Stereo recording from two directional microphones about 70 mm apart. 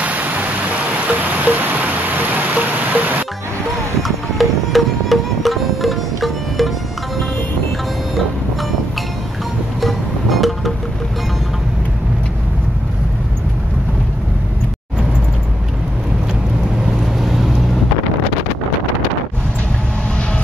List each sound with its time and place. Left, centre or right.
0.0 s rain: right
4.4 s music: centre
9.8 s music: centre
17.2 s vehicle: centre